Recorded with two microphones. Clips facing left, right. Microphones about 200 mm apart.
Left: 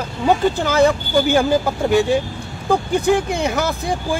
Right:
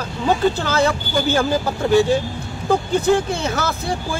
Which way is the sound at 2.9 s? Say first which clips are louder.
Even; 15° left (ahead or behind).